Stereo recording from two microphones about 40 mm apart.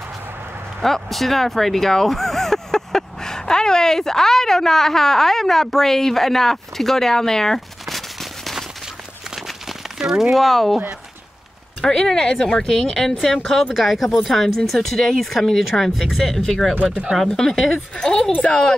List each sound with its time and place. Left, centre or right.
0.7 s speech: centre
7.8 s firecracker: centre
9.3 s crumpling: centre
10.3 s speech: centre
11.8 s speech: centre
13.7 s speech: centre
17.3 s speech: centre